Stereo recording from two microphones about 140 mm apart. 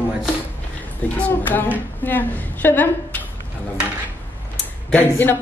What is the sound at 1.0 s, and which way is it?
A woman's voice, 10° left (ahead or behind).